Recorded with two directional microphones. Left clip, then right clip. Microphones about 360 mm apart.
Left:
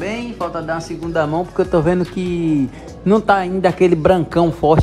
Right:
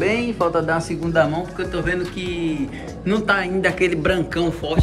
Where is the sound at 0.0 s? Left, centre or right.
Centre.